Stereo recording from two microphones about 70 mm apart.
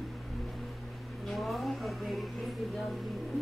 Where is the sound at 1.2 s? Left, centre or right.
Centre.